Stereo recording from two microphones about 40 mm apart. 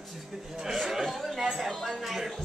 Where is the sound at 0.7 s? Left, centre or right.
Centre.